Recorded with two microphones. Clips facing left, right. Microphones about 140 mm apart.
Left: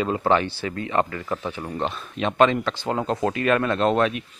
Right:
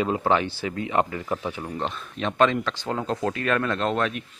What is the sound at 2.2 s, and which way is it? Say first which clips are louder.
Speech: left 2 dB; 10° left (ahead or behind).